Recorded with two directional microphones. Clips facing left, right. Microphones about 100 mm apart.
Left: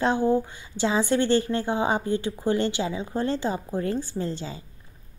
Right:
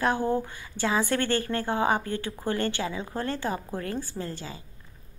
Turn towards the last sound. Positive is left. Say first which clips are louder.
# left 5 dB
turn(degrees=30)  # may be behind; listen again after turning